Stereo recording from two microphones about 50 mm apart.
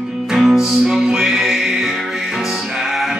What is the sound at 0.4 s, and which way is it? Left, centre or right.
Music, centre.